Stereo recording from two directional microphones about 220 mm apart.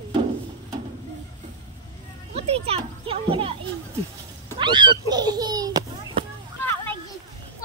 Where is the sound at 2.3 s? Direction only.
25° right (ahead or behind).